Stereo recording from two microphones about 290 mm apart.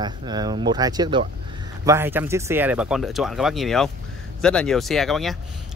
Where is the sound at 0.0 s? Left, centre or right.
Centre.